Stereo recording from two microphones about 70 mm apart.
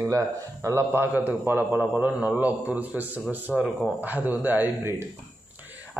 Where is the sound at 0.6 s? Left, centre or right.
Right.